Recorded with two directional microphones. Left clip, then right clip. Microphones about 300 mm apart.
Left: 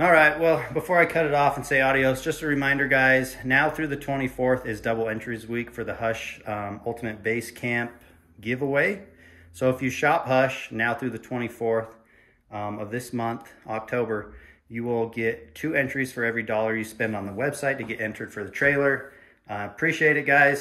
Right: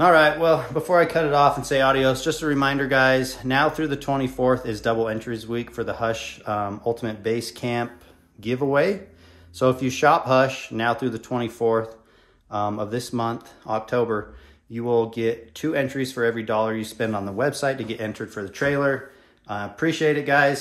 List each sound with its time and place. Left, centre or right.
0.1 s speech: centre
13.7 s speech: centre